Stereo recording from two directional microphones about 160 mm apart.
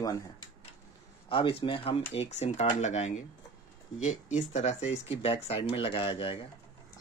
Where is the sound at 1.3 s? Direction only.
35° left (ahead or behind).